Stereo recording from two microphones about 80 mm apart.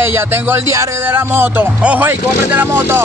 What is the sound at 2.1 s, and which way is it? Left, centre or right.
Speech, right.